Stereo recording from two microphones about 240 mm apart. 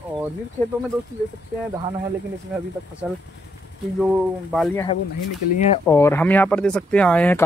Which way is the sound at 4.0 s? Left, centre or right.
Centre.